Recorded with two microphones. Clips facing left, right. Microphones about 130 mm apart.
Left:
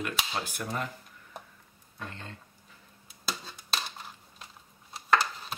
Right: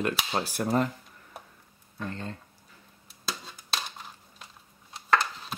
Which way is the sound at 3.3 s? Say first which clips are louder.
Even; centre (ahead or behind).